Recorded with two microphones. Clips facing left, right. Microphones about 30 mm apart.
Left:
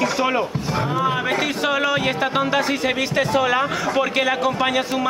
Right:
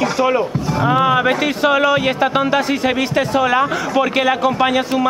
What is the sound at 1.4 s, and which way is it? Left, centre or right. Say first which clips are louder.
A man's voice: right 5 dB; centre.